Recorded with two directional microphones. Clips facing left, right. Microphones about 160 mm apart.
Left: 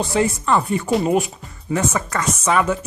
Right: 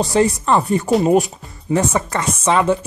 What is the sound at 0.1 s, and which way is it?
Speech, 35° right (ahead or behind).